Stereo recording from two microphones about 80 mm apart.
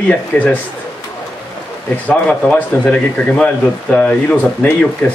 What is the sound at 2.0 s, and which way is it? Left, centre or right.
A man's voice, centre.